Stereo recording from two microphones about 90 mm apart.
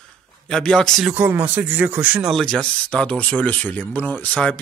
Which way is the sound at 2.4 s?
10° left (ahead or behind).